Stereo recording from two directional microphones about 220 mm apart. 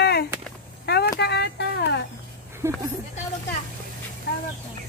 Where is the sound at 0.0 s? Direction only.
50° left (ahead or behind).